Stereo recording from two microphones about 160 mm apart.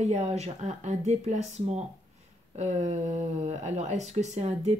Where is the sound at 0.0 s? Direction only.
45° right (ahead or behind).